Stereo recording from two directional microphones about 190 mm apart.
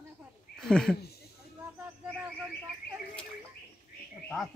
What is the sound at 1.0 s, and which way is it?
Speech, 55° left (ahead or behind).